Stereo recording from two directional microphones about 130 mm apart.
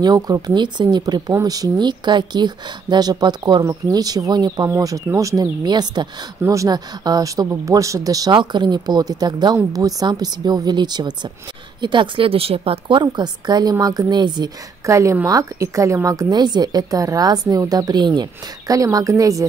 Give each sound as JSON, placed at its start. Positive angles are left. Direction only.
{"t": 0.0, "sound": "a woman's voice", "side_deg": -30}
{"t": 14.9, "sound": "a woman's voice", "side_deg": -25}